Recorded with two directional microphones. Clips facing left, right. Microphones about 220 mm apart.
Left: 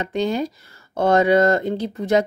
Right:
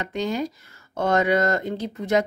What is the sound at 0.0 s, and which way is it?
A woman's voice, 30° left (ahead or behind).